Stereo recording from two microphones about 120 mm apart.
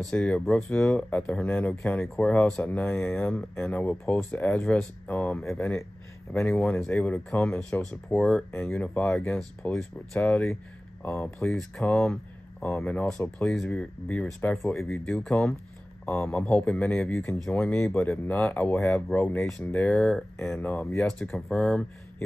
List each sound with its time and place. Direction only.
0.1 s speech: 10° left (ahead or behind)
11.5 s speech: 5° left (ahead or behind)
14.8 s speech: 5° left (ahead or behind)